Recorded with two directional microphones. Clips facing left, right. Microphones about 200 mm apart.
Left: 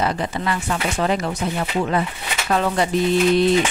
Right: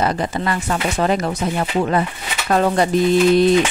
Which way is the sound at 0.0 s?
45° right (ahead or behind).